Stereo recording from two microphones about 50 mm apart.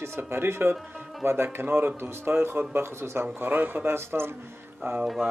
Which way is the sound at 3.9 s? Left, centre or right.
Right.